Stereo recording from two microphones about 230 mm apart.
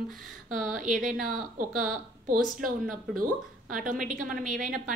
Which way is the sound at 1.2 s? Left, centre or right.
Right.